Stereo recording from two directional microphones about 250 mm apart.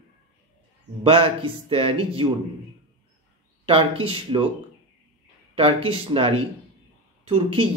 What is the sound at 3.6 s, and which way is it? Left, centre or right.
Speech, right.